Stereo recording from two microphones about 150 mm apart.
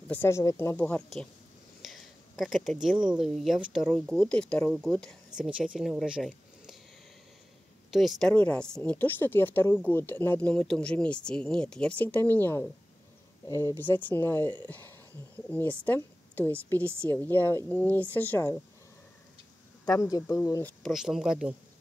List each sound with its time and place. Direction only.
0.1 s speech: 15° left (ahead or behind); by 6.8 s centre (ahead or behind)
7.9 s a woman's voice: centre (ahead or behind)
19.8 s speech: 25° left (ahead or behind)
20.8 s speech: centre (ahead or behind)